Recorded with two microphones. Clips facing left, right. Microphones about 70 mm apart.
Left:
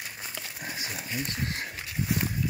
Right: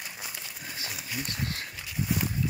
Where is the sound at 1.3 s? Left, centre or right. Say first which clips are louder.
Left 2 dB; left.